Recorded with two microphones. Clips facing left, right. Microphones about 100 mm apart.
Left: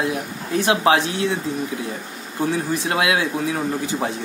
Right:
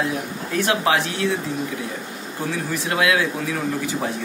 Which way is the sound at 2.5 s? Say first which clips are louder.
Even; 25° left (ahead or behind).